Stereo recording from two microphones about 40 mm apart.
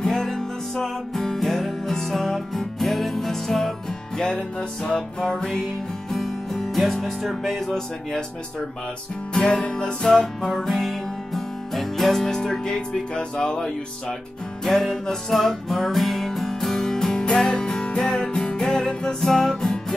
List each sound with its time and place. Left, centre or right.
0.0 s music: centre
4.2 s music: centre
9.3 s music: centre
10.6 s music: centre
14.6 s music: centre